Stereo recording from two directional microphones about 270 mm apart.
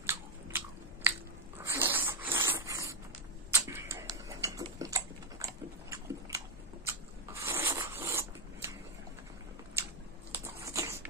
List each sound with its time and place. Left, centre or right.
0.0 s biting: centre
1.6 s a sound: centre
3.5 s tick-tock: centre
6.9 s rub: centre
7.6 s zipper: centre
10.3 s a sound: centre